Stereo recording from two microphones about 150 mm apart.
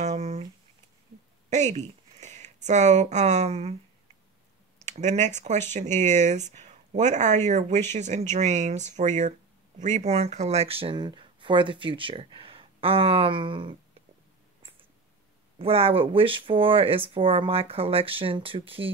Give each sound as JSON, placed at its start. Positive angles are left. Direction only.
{"t": 0.0, "sound": "a sound", "side_deg": -50}
{"t": 1.5, "sound": "speech", "side_deg": -50}
{"t": 4.8, "sound": "speech", "side_deg": -50}
{"t": 15.6, "sound": "speech", "side_deg": -40}